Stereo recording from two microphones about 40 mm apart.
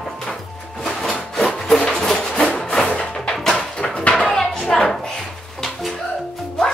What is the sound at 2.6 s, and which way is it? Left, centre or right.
Music, centre.